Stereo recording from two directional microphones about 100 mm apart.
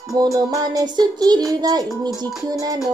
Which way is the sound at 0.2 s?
35° right (ahead or behind).